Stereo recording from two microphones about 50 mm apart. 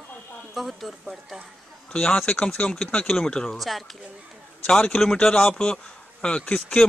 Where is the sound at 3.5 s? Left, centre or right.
Centre.